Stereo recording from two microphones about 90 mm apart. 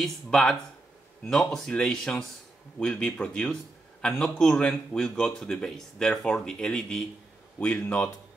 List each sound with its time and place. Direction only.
0.0 s a man's voice: 5° left (ahead or behind)